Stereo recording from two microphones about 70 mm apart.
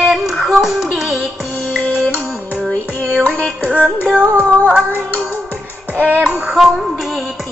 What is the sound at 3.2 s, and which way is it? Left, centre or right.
Music, left.